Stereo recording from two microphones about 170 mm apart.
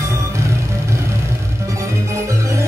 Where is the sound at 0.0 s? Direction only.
15° right (ahead or behind).